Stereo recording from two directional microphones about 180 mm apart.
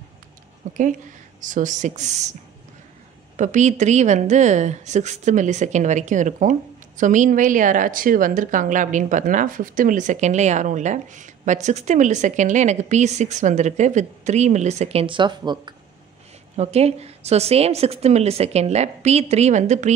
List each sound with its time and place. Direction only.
0.6 s a woman's voice: 45° right (ahead or behind)
3.3 s a woman's voice: 40° right (ahead or behind); by 15.7 s 25° right (ahead or behind)
16.5 s a woman's voice: 35° right (ahead or behind)